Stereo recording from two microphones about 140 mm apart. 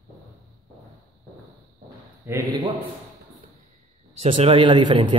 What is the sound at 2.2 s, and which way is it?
Speech, 20° right (ahead or behind).